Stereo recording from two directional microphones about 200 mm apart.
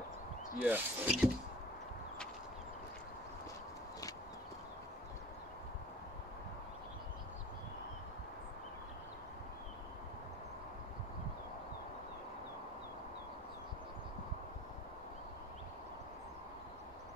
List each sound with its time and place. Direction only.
0.6 s speech: 10° right (ahead or behind)